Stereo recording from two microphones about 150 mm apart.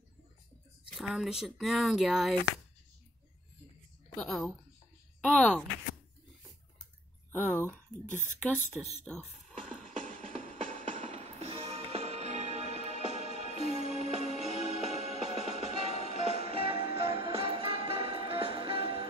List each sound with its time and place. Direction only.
0.9 s speech: centre (ahead or behind)
4.2 s speech: 5° left (ahead or behind)
7.3 s speech: 10° left (ahead or behind)
9.0 s speech: 5° left (ahead or behind)
10.0 s music: 60° right (ahead or behind)
15.3 s music: 50° left (ahead or behind)
16.0 s music: 45° right (ahead or behind)